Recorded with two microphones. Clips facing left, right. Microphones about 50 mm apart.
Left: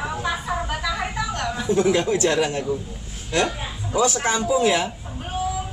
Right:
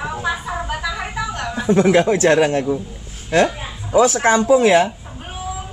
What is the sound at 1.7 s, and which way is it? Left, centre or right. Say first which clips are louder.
Speech: right 6 dB; right.